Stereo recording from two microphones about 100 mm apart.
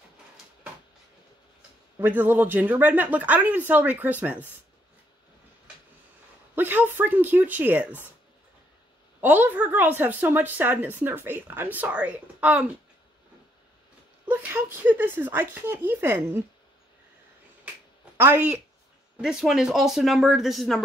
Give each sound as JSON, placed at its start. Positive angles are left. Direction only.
{"t": 2.0, "sound": "a woman's voice", "side_deg": -20}
{"t": 6.5, "sound": "a woman's voice", "side_deg": -20}
{"t": 9.2, "sound": "a woman's voice", "side_deg": -20}
{"t": 14.2, "sound": "a woman's voice", "side_deg": -15}
{"t": 18.1, "sound": "speech", "side_deg": -20}
{"t": 19.2, "sound": "speech", "side_deg": -5}